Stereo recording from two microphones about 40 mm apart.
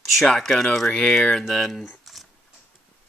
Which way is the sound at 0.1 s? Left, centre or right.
Centre.